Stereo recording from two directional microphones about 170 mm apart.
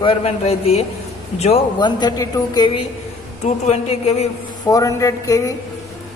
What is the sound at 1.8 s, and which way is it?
Speech, 25° left (ahead or behind).